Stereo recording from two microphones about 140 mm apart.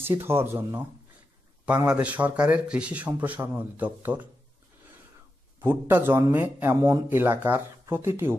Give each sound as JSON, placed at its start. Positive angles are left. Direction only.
{"t": 0.0, "sound": "a man's voice", "side_deg": -15}
{"t": 5.6, "sound": "a man's voice", "side_deg": -15}